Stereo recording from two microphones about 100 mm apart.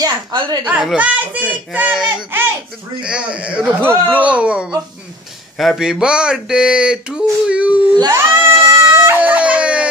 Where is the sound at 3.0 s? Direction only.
10° right (ahead or behind).